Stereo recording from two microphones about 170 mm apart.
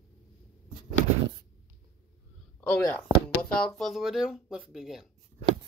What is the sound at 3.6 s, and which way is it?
Speech, 5° left (ahead or behind).